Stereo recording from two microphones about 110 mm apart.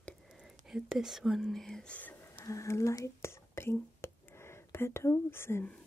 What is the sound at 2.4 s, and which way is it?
Speech, 30° left (ahead or behind).